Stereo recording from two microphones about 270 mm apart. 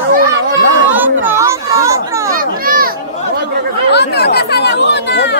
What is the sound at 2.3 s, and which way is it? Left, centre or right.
Children playing, right.